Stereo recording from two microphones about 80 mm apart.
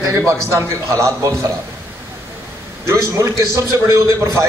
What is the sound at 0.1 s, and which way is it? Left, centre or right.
A man's voice, right.